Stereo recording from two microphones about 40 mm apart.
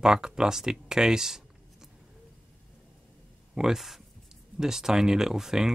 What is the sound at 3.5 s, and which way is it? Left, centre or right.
Speech, centre.